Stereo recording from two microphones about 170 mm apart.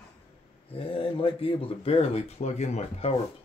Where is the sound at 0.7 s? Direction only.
30° left (ahead or behind).